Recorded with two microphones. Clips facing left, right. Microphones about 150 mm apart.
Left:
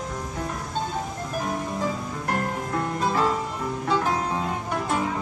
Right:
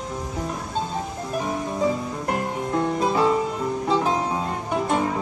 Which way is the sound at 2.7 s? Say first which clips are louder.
Right 5 dB; 20° right (ahead or behind).